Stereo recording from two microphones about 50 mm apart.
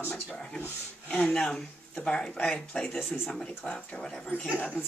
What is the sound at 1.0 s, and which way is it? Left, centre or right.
Speech, centre.